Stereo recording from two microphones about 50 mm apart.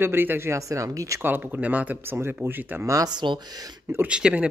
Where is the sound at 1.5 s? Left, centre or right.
Right.